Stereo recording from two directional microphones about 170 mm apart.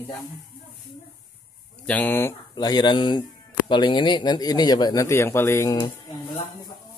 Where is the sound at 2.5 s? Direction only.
25° left (ahead or behind).